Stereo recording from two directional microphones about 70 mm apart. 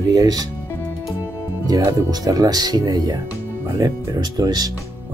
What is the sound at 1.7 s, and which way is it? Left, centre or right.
Speech, right.